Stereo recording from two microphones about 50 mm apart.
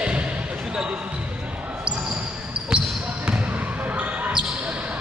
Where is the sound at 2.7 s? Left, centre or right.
Centre.